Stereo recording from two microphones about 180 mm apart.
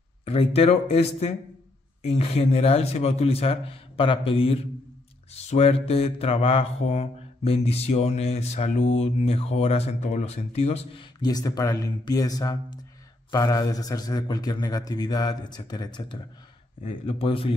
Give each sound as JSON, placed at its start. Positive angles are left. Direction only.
{"t": 0.2, "sound": "mantra", "side_deg": 30}
{"t": 13.3, "sound": "a man's voice", "side_deg": 20}
{"t": 16.8, "sound": "mantra", "side_deg": 30}